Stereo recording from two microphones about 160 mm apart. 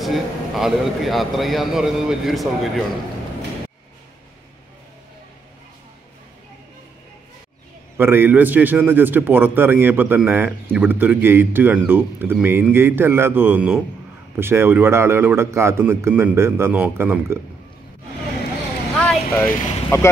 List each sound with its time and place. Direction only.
0.0 s a man's voice: centre (ahead or behind)
8.0 s a man's voice: 15° right (ahead or behind)
18.9 s vehicle: 10° left (ahead or behind)